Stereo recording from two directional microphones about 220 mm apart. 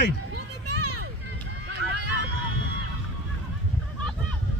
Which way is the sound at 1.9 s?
50° right (ahead or behind).